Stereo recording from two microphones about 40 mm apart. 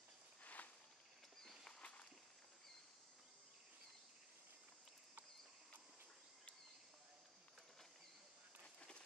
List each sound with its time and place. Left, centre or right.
0.4 s walk: left
1.8 s walk: left
8.7 s run: left